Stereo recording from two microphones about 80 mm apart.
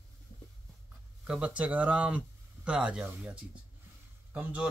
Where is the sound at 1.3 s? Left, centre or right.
Centre.